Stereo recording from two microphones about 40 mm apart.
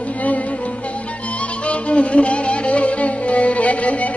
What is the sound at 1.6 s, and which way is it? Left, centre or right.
Music, left.